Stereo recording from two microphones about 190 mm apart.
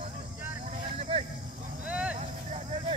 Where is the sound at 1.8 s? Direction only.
5° right (ahead or behind).